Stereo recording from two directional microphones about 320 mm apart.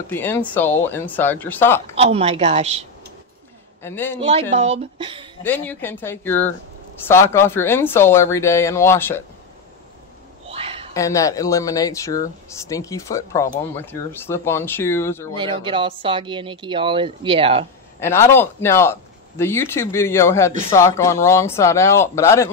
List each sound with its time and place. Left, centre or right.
0.1 s speech: centre
2.0 s a woman's voice: centre
3.8 s speech: centre
4.2 s a woman's voice: centre
5.4 s speech: centre
10.5 s a sound: centre
11.0 s speech: centre
15.3 s speech: centre
18.0 s speech: centre